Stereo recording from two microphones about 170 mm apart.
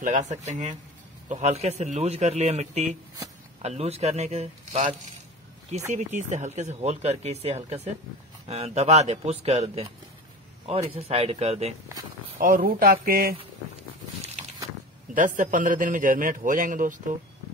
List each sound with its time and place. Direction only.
0.0 s a man's voice: 45° right (ahead or behind)
5.9 s speech: 45° right (ahead or behind)
12.4 s speech: 55° right (ahead or behind)
15.1 s a man's voice: 50° right (ahead or behind)